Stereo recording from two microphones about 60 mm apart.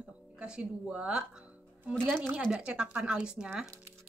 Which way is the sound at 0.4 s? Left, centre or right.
Centre.